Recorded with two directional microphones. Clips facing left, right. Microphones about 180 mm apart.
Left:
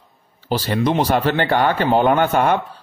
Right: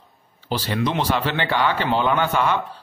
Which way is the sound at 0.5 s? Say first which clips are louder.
Left 4 dB; 45° left (ahead or behind).